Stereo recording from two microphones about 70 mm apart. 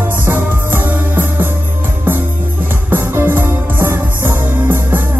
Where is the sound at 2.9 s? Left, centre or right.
Right.